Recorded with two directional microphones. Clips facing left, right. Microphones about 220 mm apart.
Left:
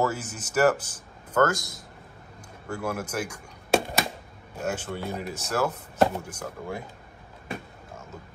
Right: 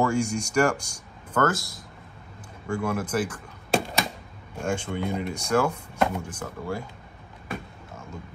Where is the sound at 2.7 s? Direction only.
5° left (ahead or behind).